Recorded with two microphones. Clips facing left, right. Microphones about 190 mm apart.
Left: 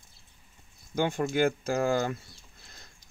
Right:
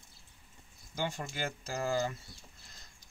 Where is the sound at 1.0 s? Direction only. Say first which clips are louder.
Left 11 dB; 55° left (ahead or behind).